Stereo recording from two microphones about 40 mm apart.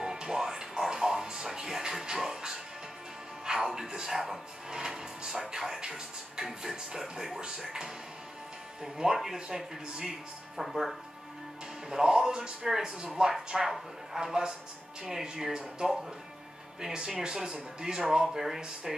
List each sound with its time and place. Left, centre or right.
0.0 s music: centre
3.4 s speech: centre
6.4 s speech: centre
11.9 s speech: centre